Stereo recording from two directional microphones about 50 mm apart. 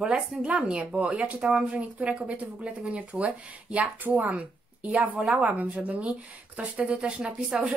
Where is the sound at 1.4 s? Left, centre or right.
Centre.